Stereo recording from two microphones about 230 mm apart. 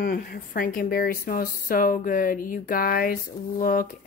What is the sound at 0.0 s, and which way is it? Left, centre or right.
Speech, left.